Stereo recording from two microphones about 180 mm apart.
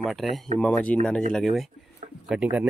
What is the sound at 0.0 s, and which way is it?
Speech, centre (ahead or behind).